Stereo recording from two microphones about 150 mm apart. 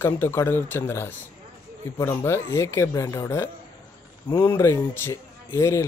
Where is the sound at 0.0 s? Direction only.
15° left (ahead or behind).